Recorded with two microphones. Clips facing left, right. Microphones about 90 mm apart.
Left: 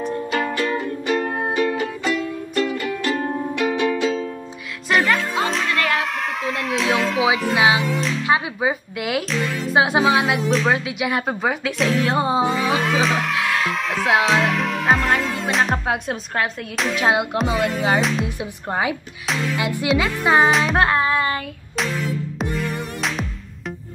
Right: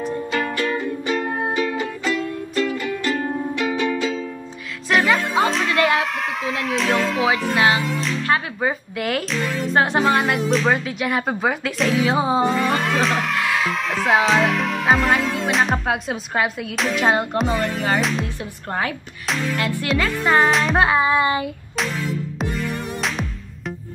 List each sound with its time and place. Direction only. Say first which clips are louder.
0.0 s music: left 1 dB; centre (ahead or behind)
4.0 s music: left 2 dB; 25° left (ahead or behind)
4.8 s speech: right 1 dB; centre (ahead or behind)
20.5 s music: even; centre (ahead or behind)